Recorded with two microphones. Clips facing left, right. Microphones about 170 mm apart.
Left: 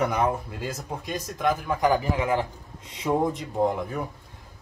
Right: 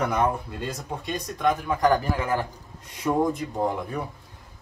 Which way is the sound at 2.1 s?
20° left (ahead or behind).